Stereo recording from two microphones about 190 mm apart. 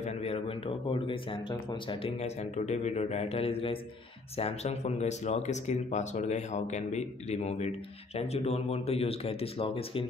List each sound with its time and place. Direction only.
0.0 s speech: 35° left (ahead or behind)